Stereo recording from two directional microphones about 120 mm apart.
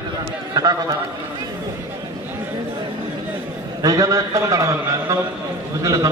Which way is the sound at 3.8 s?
30° right (ahead or behind).